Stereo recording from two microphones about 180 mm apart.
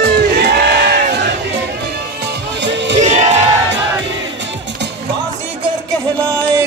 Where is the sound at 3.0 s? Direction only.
40° right (ahead or behind).